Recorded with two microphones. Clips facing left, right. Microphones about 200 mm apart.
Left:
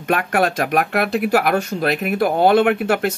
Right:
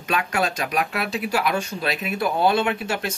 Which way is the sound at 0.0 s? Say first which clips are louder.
Left 6 dB; 55° left (ahead or behind).